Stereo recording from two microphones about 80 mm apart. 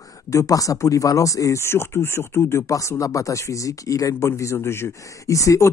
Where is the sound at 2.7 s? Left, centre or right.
Left.